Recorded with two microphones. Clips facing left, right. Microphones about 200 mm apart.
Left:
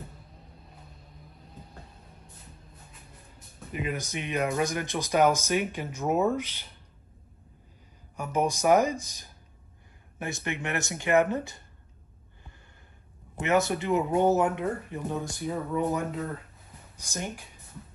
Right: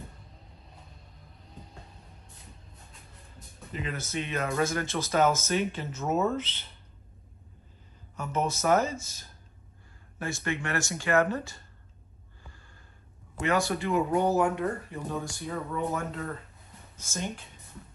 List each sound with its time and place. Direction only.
3.7 s speech: 15° left (ahead or behind)
8.2 s speech: 15° left (ahead or behind)
13.4 s speech: 20° left (ahead or behind)